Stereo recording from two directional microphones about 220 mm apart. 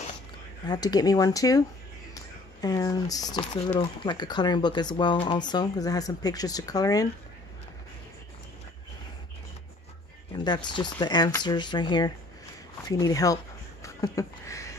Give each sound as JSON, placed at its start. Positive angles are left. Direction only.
{"t": 0.7, "sound": "speech", "side_deg": 15}
{"t": 10.3, "sound": "speech", "side_deg": 20}
{"t": 13.8, "sound": "a sound", "side_deg": 15}